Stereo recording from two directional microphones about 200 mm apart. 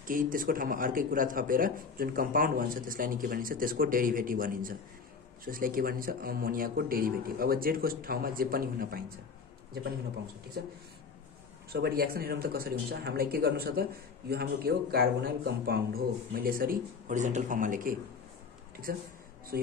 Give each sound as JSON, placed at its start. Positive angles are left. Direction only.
{"t": 0.0, "sound": "speech", "side_deg": -45}
{"t": 10.6, "sound": "speech", "side_deg": -55}